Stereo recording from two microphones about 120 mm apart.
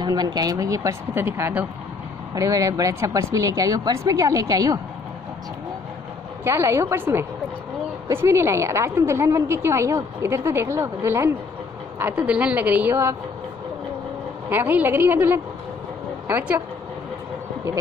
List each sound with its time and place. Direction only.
0.0 s a woman's voice: 35° right (ahead or behind); by 1.7 s 15° right (ahead or behind)
2.3 s a woman's voice: 25° right (ahead or behind)
6.4 s a woman's voice: 20° right (ahead or behind)
14.5 s a woman's voice: 15° right (ahead or behind)